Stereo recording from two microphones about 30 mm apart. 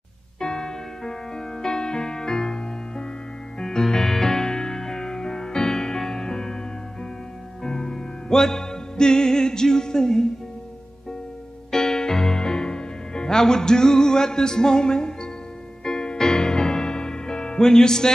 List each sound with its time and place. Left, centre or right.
0.4 s music: left
11.7 s music: centre